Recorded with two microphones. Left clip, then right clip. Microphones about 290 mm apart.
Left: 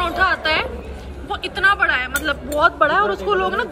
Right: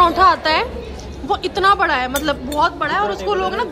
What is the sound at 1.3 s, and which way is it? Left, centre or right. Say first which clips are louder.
Speech: right 2 dB; centre.